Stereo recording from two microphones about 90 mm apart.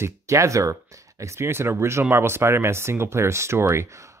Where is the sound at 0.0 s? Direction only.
35° right (ahead or behind).